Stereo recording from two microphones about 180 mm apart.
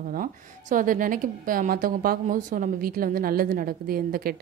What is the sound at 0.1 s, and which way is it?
A woman's voice, 50° right (ahead or behind).